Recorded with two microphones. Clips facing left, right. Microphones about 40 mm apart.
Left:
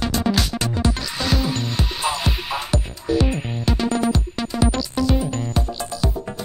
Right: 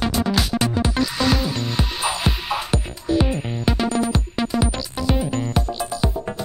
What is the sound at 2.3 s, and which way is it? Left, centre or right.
Music, right.